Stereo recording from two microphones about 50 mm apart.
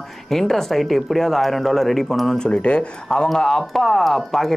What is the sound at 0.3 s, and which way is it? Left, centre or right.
Speech, centre.